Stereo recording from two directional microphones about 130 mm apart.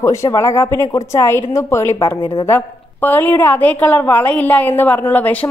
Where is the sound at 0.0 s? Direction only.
25° left (ahead or behind).